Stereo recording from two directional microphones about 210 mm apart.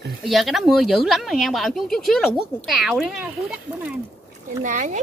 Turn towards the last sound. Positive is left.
turn(degrees=-35)  # may be behind; listen again after turning